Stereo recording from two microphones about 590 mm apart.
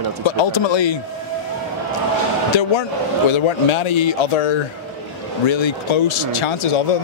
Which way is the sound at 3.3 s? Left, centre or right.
Left.